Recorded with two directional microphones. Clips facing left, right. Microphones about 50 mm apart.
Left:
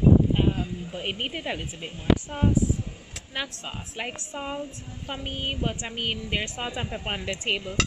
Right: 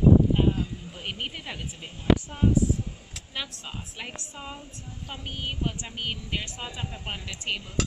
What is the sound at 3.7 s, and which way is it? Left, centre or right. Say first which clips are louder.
A woman's voice: left 4 dB; left.